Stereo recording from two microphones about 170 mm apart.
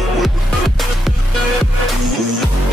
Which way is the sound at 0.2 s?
Centre (ahead or behind).